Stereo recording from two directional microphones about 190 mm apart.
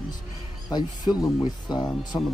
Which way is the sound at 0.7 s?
20° left (ahead or behind).